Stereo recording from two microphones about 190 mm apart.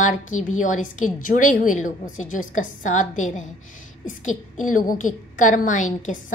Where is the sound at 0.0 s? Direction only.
40° left (ahead or behind).